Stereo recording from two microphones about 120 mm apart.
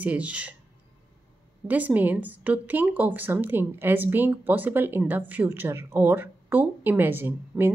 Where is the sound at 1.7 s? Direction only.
15° right (ahead or behind).